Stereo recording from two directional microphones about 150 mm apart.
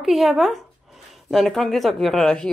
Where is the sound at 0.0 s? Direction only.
Centre (ahead or behind).